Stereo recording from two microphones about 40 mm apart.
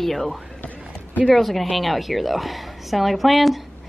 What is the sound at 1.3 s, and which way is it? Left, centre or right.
Speech, centre.